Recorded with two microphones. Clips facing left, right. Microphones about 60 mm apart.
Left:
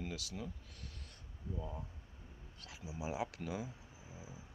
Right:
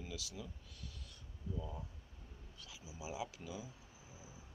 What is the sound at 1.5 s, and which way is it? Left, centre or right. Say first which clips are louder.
Speech: even; left.